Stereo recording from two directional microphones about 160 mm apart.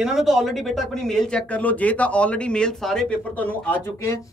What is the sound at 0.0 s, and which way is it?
Speech, centre (ahead or behind).